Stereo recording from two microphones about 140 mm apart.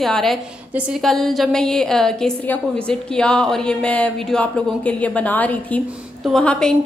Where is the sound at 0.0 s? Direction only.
Centre (ahead or behind).